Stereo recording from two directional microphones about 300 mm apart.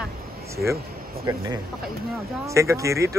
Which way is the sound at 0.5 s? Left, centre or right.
Centre.